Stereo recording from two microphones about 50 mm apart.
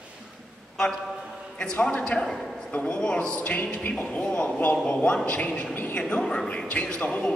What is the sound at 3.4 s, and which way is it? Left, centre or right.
A man's voice, left.